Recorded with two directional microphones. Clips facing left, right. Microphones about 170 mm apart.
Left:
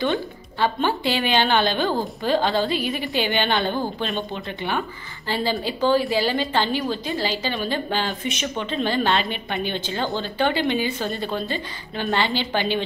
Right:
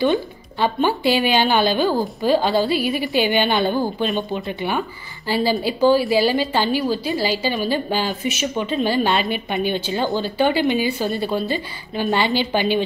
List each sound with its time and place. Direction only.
0.0 s a woman's voice: 15° right (ahead or behind)